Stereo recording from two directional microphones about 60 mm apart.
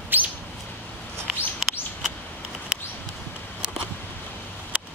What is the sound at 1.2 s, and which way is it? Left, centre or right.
Chirp, centre.